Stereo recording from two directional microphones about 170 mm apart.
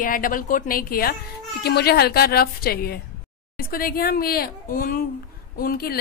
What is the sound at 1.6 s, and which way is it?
Speech, 70° left (ahead or behind).